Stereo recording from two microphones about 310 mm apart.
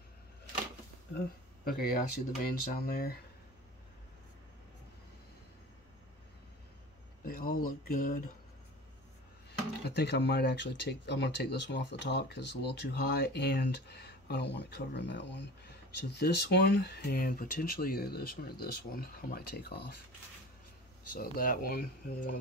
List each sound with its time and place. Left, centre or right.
1.1 s speech: left
7.2 s speech: left
9.8 s speech: left
21.1 s speech: left